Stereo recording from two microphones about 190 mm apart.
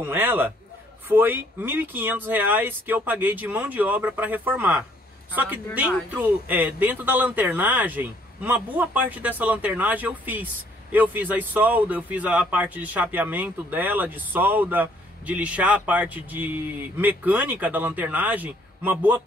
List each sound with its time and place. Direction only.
0.0 s speech: 10° right (ahead or behind)